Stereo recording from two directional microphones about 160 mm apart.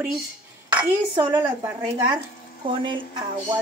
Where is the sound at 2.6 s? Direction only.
30° right (ahead or behind).